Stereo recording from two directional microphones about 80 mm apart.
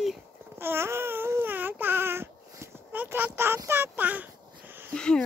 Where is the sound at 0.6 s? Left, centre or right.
Right.